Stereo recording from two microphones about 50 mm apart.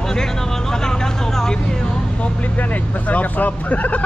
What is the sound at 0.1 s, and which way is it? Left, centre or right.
Vehicle, centre.